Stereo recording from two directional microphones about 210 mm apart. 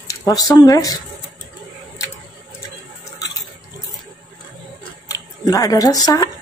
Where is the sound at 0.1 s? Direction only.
15° left (ahead or behind).